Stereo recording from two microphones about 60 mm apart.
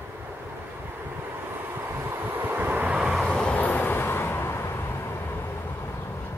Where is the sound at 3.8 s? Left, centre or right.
Left.